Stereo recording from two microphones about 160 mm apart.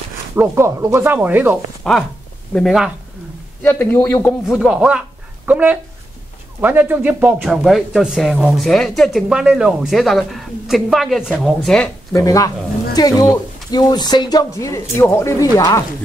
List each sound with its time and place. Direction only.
0.4 s speech: 15° right (ahead or behind)
1.8 s speech: centre (ahead or behind)
3.6 s a man's voice: 10° left (ahead or behind)
4.5 s speech: 5° right (ahead or behind)
12.1 s speech: 20° left (ahead or behind)